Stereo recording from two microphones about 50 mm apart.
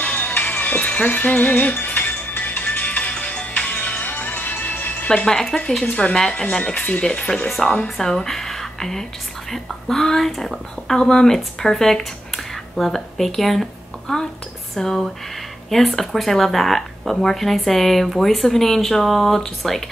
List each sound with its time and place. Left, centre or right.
0.0 s music: left
5.3 s speech: centre
5.9 s speech: left
6.1 s speech: centre
6.4 s speech: left
7.4 s a woman's voice: centre